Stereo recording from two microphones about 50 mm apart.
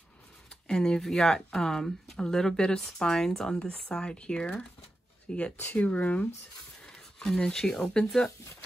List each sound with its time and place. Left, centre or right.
0.7 s speech: centre
3.5 s speech: left
5.6 s speech: left
6.9 s speech: centre